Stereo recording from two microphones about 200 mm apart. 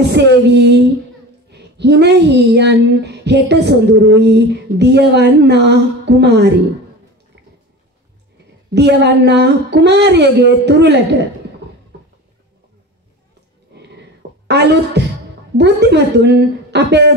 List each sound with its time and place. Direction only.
0.1 s female singing: 60° right (ahead or behind)
1.5 s speech: 55° right (ahead or behind)
8.7 s speech: 60° right (ahead or behind)
14.5 s speech: 60° right (ahead or behind)